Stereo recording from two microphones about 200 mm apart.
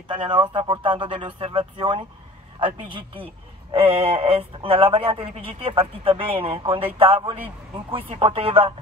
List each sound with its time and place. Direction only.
0.1 s a man's voice: 25° right (ahead or behind)
3.7 s a man's voice: 30° right (ahead or behind)